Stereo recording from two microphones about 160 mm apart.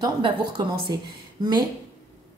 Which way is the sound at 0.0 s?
25° right (ahead or behind).